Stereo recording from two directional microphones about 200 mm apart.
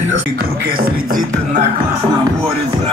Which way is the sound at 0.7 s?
40° right (ahead or behind).